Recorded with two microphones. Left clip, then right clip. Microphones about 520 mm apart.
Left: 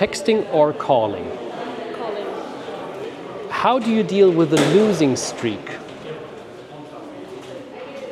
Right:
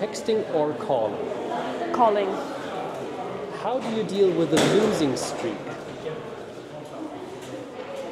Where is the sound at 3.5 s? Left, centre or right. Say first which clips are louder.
Left 10 dB; left.